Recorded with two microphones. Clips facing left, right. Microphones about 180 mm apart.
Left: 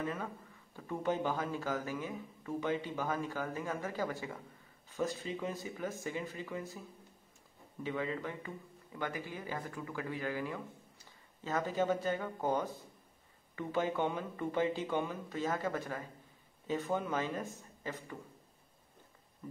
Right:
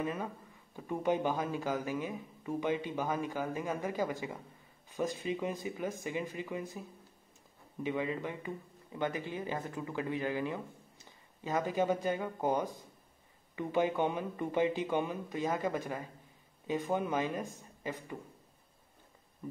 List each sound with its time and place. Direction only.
0.0 s speech: 15° right (ahead or behind)
7.8 s speech: 15° right (ahead or behind)